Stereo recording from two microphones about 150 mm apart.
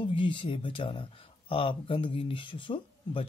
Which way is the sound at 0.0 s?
35° left (ahead or behind).